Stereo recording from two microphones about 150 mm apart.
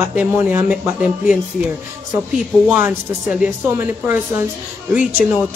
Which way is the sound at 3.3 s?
15° right (ahead or behind).